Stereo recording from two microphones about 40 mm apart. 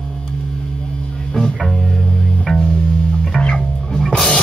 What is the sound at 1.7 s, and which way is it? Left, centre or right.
Music, centre.